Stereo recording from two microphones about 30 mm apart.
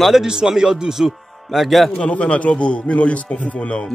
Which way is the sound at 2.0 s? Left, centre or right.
Left.